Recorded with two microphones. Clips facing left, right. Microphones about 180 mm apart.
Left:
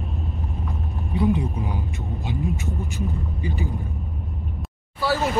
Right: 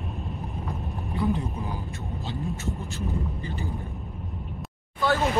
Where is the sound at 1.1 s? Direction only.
15° left (ahead or behind).